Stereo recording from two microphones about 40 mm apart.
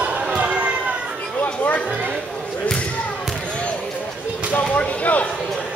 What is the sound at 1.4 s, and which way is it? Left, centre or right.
Music, left.